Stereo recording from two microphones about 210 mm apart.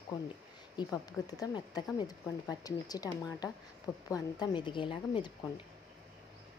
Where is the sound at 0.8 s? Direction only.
15° left (ahead or behind).